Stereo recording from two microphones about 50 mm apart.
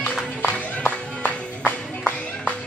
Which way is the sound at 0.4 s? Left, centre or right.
Left.